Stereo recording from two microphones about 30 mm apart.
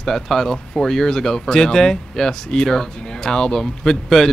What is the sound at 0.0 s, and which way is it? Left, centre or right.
Speech, centre.